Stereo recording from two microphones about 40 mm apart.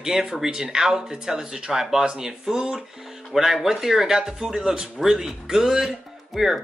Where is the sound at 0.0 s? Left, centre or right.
Centre.